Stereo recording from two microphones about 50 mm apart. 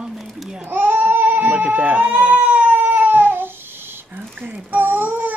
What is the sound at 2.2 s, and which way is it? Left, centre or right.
Cat, right.